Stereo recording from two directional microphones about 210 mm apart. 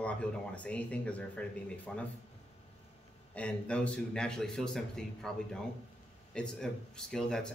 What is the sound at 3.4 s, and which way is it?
A man's voice, 5° left (ahead or behind).